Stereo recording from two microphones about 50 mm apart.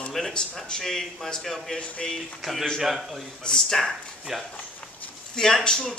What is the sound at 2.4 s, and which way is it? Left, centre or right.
Speech, centre.